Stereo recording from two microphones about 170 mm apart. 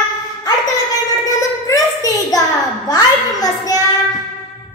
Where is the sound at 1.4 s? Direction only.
20° left (ahead or behind).